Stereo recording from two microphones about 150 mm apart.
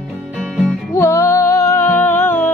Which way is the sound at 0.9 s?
20° left (ahead or behind).